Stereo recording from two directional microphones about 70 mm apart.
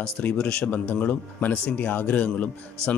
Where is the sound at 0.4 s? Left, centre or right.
Centre.